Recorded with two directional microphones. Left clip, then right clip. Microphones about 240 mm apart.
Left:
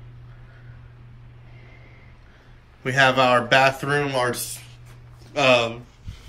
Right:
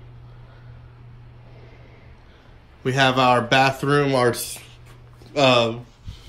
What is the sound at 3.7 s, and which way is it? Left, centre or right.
Speech, centre.